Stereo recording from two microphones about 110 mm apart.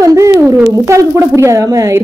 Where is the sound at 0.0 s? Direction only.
30° right (ahead or behind).